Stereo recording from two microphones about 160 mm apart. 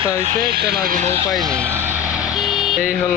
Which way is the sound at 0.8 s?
55° right (ahead or behind).